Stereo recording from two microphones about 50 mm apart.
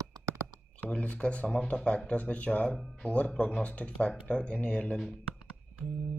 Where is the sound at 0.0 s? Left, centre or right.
Right.